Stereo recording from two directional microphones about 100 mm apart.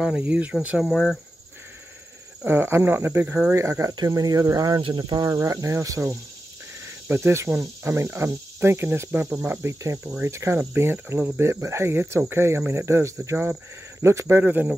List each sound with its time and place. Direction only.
0.2 s speech: 15° right (ahead or behind)
2.4 s speech: 25° right (ahead or behind)
3.9 s speech: 40° right (ahead or behind)
14.4 s speech: 15° right (ahead or behind)